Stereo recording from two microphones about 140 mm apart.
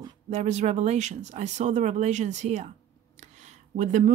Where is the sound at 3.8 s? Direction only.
60° right (ahead or behind).